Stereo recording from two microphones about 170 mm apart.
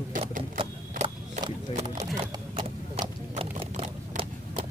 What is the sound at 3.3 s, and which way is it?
Horse, 35° right (ahead or behind).